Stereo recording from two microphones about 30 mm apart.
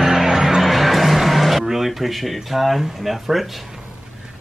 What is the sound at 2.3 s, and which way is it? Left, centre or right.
Speech, centre.